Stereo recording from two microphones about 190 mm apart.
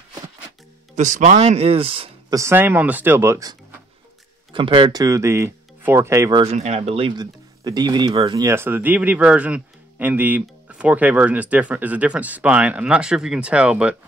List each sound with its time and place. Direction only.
0.9 s speech: 40° right (ahead or behind)
2.3 s speech: 15° right (ahead or behind)
4.5 s speech: 25° right (ahead or behind)
6.4 s speech: 35° right (ahead or behind); by 13.9 s 5° right (ahead or behind)